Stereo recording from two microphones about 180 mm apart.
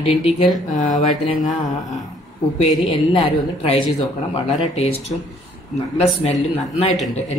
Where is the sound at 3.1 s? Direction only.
35° left (ahead or behind).